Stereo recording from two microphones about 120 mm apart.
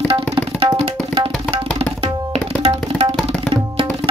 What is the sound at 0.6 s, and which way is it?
Tabla, 50° right (ahead or behind).